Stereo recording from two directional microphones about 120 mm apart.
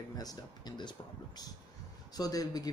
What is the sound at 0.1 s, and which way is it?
Speech, 35° left (ahead or behind).